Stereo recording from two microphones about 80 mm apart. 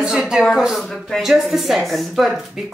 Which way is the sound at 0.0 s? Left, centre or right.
Centre.